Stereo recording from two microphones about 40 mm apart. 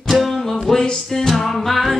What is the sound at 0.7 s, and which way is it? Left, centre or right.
Music, centre.